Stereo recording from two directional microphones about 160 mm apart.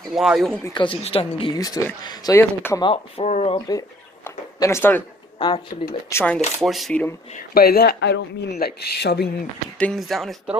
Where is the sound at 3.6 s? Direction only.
20° left (ahead or behind).